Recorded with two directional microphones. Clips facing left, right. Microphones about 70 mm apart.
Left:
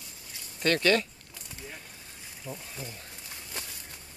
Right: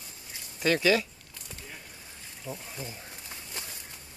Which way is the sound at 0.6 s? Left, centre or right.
Centre.